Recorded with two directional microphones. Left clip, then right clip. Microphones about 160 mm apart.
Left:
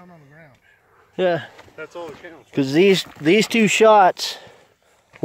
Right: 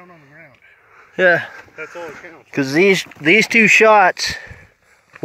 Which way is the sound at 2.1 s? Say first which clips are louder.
Right 3 dB; 20° right (ahead or behind).